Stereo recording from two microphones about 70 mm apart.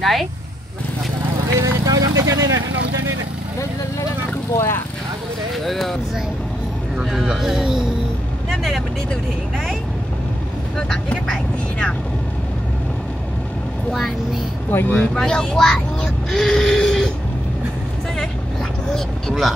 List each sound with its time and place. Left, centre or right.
0.0 s speech: centre
1.6 s speech: right
4.6 s speech: left
5.7 s speech: centre
7.1 s speech: centre
10.8 s speech: centre
13.9 s speech: centre
14.7 s speech: left
15.1 s speech: centre
18.9 s speech: centre